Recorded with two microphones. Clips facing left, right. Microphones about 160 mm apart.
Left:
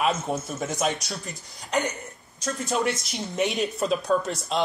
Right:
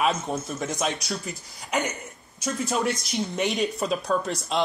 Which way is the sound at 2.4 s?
Centre (ahead or behind).